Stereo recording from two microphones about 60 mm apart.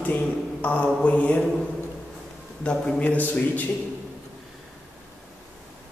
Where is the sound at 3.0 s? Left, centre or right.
Left.